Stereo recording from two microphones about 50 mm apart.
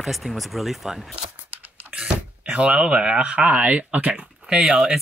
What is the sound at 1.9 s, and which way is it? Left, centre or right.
Speech, right.